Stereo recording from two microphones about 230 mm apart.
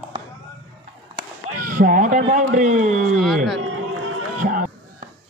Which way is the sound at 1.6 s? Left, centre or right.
Right.